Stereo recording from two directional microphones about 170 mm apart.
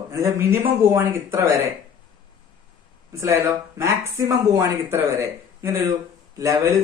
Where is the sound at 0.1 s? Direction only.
15° right (ahead or behind).